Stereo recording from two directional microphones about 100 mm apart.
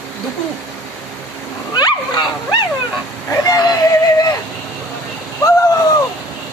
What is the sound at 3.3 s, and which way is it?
Speech, 35° left (ahead or behind).